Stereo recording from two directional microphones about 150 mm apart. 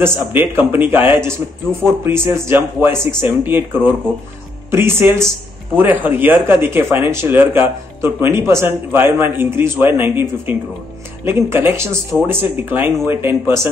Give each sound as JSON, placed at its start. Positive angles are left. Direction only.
{"t": 0.3, "sound": "speech", "side_deg": -15}